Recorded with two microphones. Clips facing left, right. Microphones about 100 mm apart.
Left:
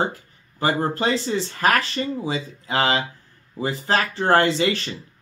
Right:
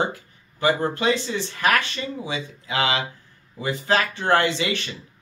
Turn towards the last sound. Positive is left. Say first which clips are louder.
# left 3 dB
turn(degrees=35)  # may be behind; listen again after turning